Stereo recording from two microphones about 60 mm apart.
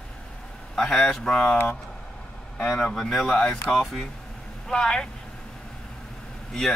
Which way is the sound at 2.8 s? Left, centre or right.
Centre.